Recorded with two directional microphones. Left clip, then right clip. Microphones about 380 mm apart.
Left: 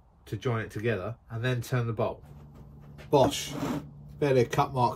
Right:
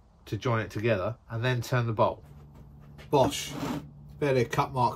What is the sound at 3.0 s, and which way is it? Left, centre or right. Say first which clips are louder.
Speech: left 1 dB; centre.